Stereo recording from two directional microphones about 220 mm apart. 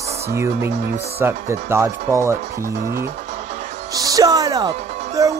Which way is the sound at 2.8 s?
40° right (ahead or behind).